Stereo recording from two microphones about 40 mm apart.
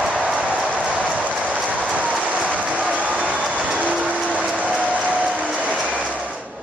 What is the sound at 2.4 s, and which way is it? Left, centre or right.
Train, right.